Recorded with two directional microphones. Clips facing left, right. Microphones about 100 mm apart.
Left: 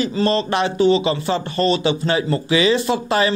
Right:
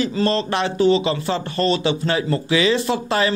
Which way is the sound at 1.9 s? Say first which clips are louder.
Left 1 dB; 20° left (ahead or behind).